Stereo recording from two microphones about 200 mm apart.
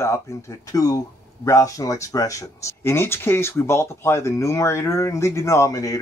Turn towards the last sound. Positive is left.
turn(degrees=15)  # may be behind; listen again after turning